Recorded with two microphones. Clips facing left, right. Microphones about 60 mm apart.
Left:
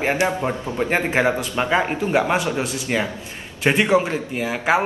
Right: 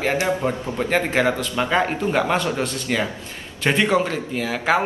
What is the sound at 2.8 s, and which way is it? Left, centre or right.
A man's voice, left.